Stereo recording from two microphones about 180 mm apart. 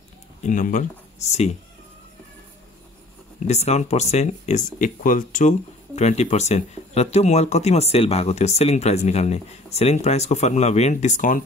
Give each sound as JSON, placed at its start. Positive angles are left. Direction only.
{"t": 0.4, "sound": "speech", "side_deg": 45}
{"t": 3.3, "sound": "speech", "side_deg": 35}